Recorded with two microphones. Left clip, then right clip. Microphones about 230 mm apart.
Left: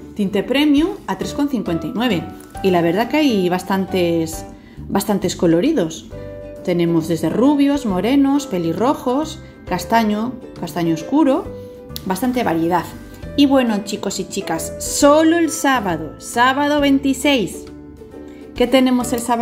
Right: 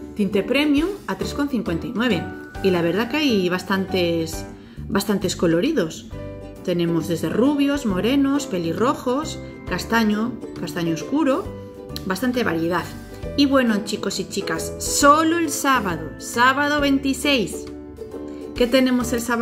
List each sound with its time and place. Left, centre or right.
0.2 s speech: centre
3.5 s speech: left
3.9 s speech: centre
8.0 s speech: left
8.5 s speech: centre
9.8 s speech: left
10.7 s speech: centre
12.1 s speech: left
13.6 s speech: centre
18.6 s speech: centre